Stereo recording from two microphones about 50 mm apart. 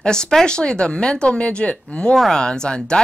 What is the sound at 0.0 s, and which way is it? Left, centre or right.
Speech, centre.